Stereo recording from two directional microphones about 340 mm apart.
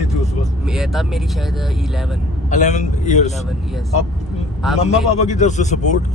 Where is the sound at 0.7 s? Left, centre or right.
Centre.